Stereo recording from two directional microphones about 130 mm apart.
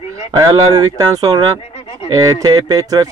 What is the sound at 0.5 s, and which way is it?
Speech, 30° right (ahead or behind).